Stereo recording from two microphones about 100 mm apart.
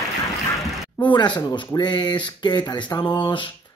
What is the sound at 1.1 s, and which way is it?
Speech, 50° left (ahead or behind).